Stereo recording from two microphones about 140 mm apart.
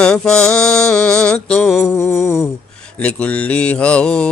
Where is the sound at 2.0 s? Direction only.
20° left (ahead or behind).